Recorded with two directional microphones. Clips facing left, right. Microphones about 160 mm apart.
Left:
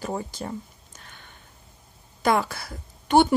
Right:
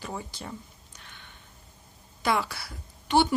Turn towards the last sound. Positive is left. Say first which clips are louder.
# left 5 dB
turn(degrees=50)  # may be behind; listen again after turning